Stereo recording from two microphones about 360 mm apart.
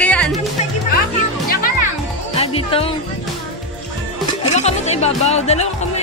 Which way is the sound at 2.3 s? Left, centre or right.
Centre.